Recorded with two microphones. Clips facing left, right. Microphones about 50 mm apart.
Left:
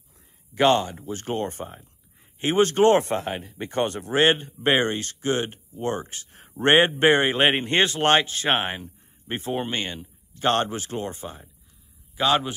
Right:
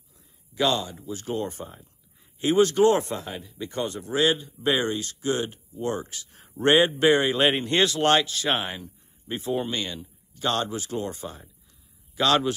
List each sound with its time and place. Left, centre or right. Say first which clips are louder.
0.6 s speech: left 5 dB; left
12.2 s a man's voice: even; centre